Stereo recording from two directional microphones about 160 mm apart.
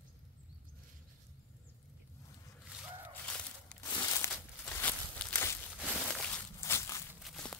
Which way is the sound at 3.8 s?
20° left (ahead or behind).